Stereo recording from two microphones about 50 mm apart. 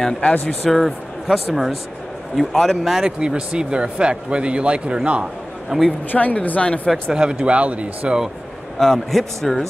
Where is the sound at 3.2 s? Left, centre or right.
Centre.